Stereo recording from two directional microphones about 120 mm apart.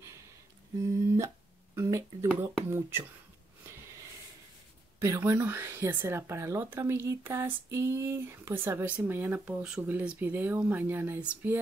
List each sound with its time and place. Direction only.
0.8 s a sound: 25° right (ahead or behind)
1.8 s speech: 25° right (ahead or behind)
5.0 s speech: 25° right (ahead or behind)